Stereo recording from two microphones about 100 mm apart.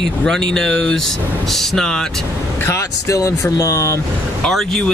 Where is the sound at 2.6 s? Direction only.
30° left (ahead or behind).